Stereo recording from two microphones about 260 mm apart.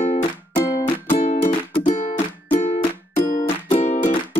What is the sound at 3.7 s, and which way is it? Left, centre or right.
Music, left.